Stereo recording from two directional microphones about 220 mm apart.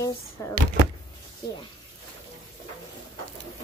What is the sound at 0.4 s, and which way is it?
Speech, 15° left (ahead or behind).